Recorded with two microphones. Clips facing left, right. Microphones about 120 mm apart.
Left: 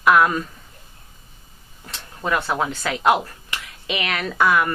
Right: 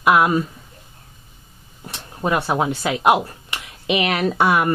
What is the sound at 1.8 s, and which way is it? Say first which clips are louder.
Speech: right 4 dB; 25° right (ahead or behind).